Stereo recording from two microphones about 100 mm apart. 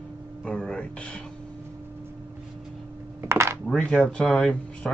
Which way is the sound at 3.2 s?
25° right (ahead or behind).